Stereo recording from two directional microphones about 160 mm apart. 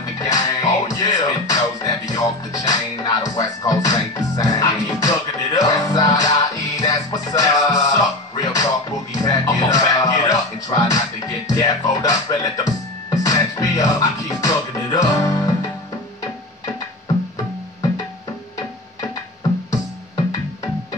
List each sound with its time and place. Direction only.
0.3 s music: 20° left (ahead or behind)